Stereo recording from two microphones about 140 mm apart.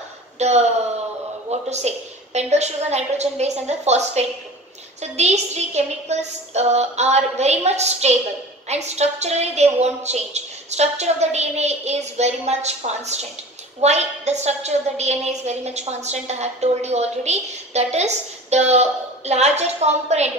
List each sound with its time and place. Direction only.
0.4 s a woman's voice: 50° right (ahead or behind)